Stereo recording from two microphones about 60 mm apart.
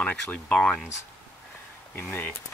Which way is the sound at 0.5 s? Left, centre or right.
Centre.